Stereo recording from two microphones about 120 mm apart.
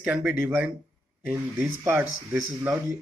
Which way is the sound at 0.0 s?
10° right (ahead or behind).